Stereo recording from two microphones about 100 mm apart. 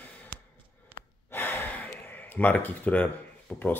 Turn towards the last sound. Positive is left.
turn(degrees=20)  # may be behind; listen again after turning